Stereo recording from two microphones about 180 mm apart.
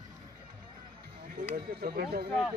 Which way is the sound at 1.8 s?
60° right (ahead or behind).